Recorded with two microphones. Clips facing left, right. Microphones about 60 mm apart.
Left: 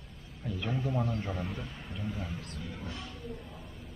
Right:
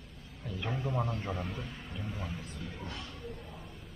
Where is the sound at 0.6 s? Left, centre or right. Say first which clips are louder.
Left 1 dB; centre.